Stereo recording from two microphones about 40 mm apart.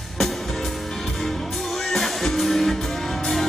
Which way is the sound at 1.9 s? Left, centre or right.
Centre.